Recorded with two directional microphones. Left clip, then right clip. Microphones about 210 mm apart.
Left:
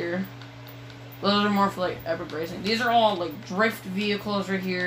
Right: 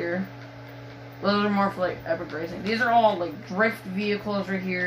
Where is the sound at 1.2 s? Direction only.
15° left (ahead or behind).